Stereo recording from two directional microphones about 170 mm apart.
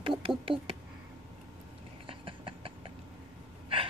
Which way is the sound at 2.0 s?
30° right (ahead or behind).